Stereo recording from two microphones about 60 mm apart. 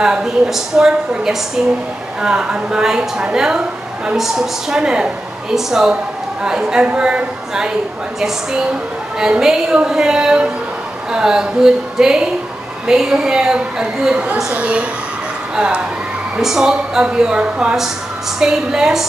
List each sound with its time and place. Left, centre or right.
0.0 s a woman's voice: centre